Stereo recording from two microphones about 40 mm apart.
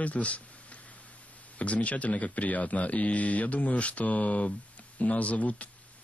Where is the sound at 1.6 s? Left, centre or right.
Left.